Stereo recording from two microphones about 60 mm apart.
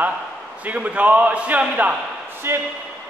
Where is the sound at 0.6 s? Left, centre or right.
Right.